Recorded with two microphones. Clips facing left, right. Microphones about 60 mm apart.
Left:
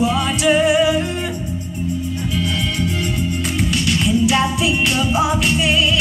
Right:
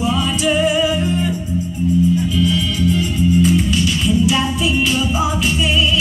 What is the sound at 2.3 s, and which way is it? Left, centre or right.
Music, left.